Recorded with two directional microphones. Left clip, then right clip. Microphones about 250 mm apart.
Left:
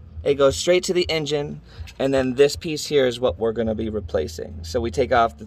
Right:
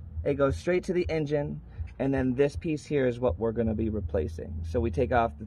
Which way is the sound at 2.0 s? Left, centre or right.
Centre.